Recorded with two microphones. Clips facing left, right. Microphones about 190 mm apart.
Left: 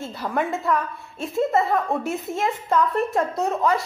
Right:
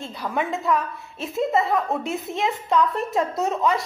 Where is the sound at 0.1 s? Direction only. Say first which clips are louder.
Left 1 dB; centre (ahead or behind).